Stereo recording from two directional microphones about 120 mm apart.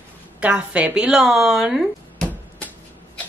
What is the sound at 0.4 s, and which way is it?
Speech, 10° right (ahead or behind).